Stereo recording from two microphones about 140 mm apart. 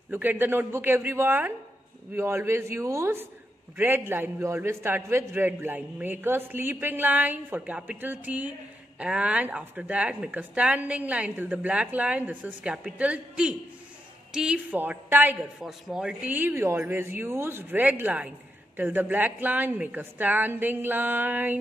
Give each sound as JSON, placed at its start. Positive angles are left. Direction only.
{"t": 0.1, "sound": "a man's voice", "side_deg": -15}